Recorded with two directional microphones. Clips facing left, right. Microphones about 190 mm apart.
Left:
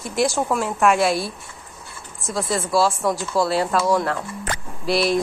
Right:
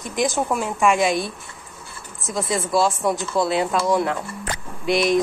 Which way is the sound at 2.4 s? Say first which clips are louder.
Even; centre (ahead or behind).